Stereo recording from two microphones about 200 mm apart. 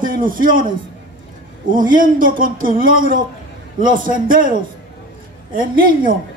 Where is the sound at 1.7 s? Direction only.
40° right (ahead or behind).